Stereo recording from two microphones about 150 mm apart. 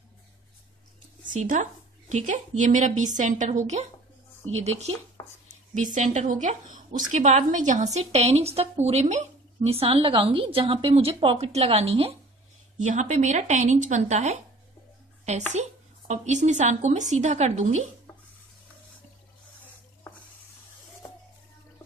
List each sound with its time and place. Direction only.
1.3 s a woman's voice: 55° right (ahead or behind)
5.9 s a woman's voice: 55° right (ahead or behind)
12.7 s a woman's voice: 55° right (ahead or behind)
16.1 s a woman's voice: 55° right (ahead or behind)